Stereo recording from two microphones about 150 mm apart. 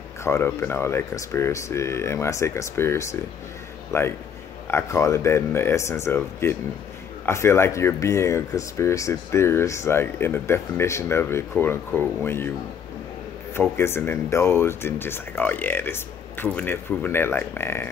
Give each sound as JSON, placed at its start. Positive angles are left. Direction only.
{"t": 0.2, "sound": "a man's voice", "side_deg": 15}
{"t": 13.6, "sound": "speech", "side_deg": 15}